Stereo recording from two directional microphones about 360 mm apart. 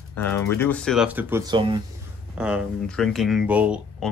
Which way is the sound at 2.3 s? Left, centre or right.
Centre.